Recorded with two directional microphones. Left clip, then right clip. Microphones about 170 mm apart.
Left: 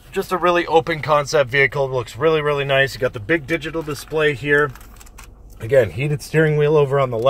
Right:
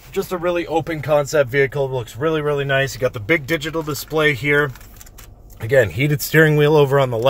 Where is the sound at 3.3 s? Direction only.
30° right (ahead or behind).